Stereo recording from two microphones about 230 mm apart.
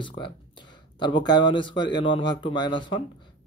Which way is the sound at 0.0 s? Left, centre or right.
Left.